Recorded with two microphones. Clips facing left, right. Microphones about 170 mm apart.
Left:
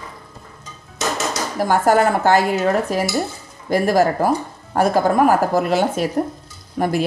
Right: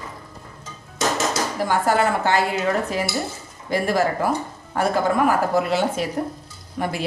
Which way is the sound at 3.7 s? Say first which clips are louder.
Left 5 dB; 40° left (ahead or behind).